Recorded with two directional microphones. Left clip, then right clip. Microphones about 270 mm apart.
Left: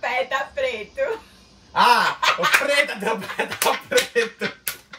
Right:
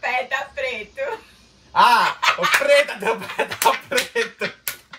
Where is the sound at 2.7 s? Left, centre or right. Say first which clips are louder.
Right 4 dB; centre.